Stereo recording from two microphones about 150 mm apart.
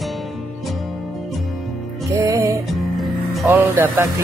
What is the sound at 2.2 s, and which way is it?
Music, 20° right (ahead or behind).